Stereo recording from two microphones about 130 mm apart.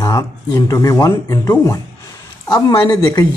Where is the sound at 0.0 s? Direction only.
30° left (ahead or behind).